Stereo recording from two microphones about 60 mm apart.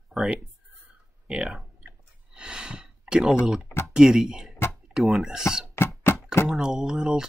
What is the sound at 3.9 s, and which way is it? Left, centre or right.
Speech, centre.